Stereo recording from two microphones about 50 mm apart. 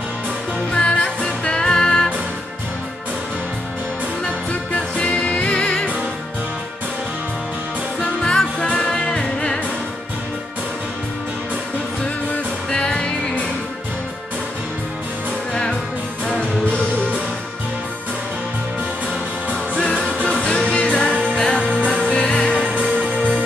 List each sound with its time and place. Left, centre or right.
0.7 s music: left
1.4 s music: centre
4.5 s music: left
8.0 s music: centre
12.7 s music: centre
15.5 s music: centre
19.7 s music: centre
22.8 s music: right